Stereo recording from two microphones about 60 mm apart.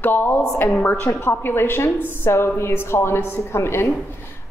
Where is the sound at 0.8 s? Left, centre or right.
Left.